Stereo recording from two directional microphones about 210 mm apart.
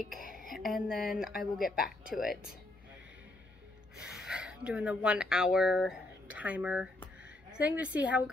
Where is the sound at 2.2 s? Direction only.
45° left (ahead or behind).